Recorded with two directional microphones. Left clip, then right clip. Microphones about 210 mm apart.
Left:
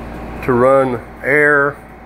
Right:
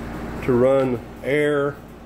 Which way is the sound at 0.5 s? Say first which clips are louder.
Left 6 dB; 5° right (ahead or behind).